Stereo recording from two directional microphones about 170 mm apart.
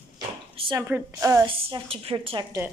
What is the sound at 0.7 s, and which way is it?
Speech, 20° right (ahead or behind).